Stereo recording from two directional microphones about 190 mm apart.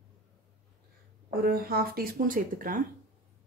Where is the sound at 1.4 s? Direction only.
55° right (ahead or behind).